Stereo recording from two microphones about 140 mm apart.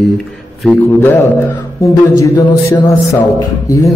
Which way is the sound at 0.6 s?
5° left (ahead or behind).